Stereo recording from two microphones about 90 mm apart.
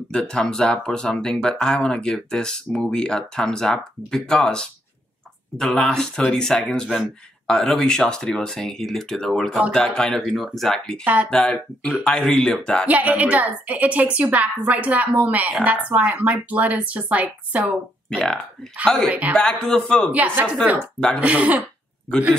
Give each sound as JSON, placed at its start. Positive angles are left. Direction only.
{"t": 0.1, "sound": "speech", "side_deg": 10}
{"t": 12.8, "sound": "a woman's voice", "side_deg": -20}
{"t": 19.3, "sound": "speech", "side_deg": 10}
{"t": 20.1, "sound": "a woman's voice", "side_deg": -20}